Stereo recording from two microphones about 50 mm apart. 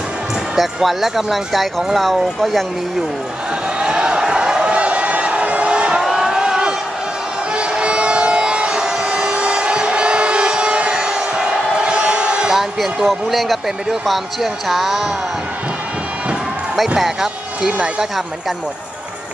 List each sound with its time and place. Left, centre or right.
0.6 s speech: centre
3.8 s a sound: centre
6.0 s crowd: centre
7.5 s music: centre
11.7 s a sound: centre
12.5 s speech: centre
17.0 s speech: centre